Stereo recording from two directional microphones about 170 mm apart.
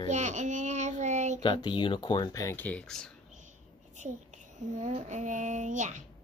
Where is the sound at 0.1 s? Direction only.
45° right (ahead or behind).